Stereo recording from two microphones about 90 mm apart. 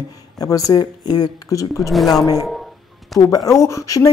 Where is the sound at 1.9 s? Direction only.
Centre (ahead or behind).